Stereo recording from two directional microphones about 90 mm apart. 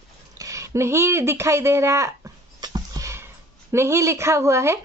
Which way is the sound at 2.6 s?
50° right (ahead or behind).